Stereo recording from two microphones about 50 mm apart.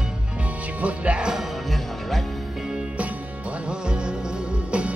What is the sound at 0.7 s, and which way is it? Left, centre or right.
Speech, right.